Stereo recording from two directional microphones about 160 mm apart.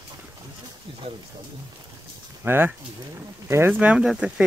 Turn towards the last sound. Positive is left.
turn(degrees=-5)  # may be behind; listen again after turning